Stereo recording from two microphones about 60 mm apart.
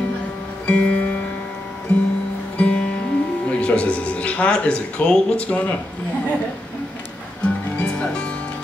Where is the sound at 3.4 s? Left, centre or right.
Centre.